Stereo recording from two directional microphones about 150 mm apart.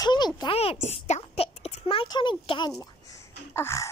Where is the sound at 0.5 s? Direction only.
40° left (ahead or behind).